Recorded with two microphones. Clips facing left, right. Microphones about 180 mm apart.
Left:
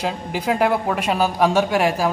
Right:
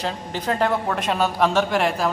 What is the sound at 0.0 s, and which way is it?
A man's voice, 10° left (ahead or behind).